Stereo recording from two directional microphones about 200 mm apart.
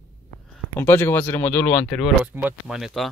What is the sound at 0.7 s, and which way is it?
Speech, 10° left (ahead or behind).